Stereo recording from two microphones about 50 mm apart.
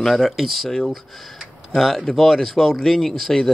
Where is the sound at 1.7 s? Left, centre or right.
Centre.